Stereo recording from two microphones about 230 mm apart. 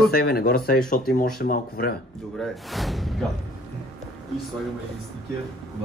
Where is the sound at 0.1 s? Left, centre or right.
Left.